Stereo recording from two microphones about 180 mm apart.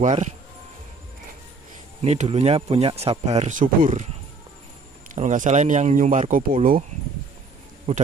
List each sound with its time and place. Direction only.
0.0 s speech: 40° right (ahead or behind)
2.0 s speech: 35° right (ahead or behind)
5.1 s speech: 45° right (ahead or behind)